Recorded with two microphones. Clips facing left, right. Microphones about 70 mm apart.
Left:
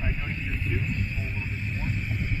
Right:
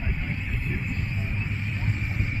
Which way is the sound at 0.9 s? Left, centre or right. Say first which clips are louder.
Right 1 dB; right.